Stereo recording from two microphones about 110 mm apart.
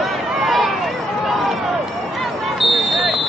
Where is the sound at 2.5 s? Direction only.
Centre (ahead or behind).